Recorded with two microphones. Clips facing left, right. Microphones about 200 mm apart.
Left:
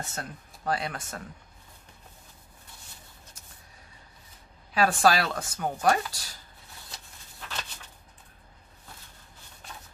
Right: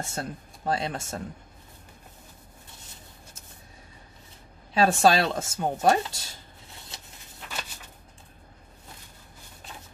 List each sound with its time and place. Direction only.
0.0 s speech: 30° right (ahead or behind)
4.7 s speech: 25° right (ahead or behind)